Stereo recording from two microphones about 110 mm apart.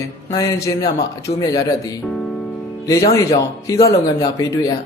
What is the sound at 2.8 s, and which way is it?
A man's voice, 30° left (ahead or behind).